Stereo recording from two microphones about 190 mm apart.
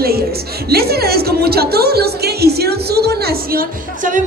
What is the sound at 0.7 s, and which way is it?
A woman's voice, 55° right (ahead or behind).